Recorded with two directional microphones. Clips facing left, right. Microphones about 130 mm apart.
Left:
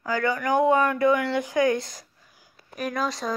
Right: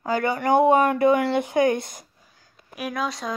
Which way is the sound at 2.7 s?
5° right (ahead or behind).